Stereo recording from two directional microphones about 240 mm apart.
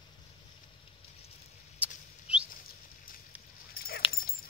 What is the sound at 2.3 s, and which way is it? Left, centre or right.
Bird flight, centre.